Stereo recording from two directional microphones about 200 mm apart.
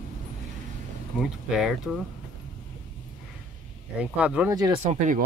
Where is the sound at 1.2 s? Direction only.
5° right (ahead or behind).